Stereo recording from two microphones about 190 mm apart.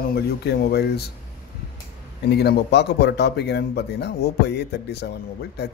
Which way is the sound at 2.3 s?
60° left (ahead or behind).